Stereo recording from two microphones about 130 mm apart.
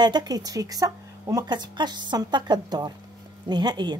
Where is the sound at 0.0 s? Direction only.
35° right (ahead or behind).